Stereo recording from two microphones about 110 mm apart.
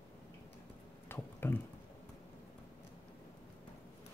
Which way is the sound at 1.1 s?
20° left (ahead or behind).